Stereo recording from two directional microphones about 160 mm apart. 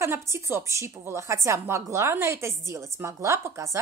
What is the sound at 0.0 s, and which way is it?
A woman's voice, 15° right (ahead or behind).